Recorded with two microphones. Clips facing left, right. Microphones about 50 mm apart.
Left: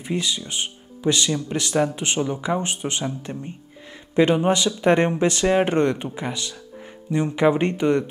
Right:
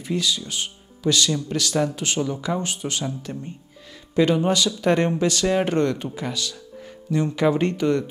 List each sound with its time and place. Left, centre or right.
0.0 s speech: left